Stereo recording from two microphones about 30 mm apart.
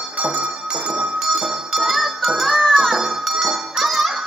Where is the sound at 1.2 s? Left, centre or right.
Centre.